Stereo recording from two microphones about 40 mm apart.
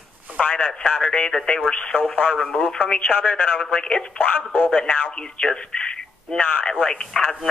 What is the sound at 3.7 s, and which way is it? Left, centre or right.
Speech, left.